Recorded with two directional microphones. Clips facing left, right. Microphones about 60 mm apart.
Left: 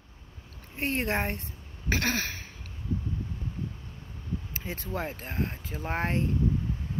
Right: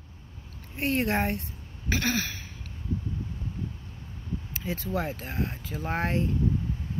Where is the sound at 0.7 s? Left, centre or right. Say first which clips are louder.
Right 3 dB; left.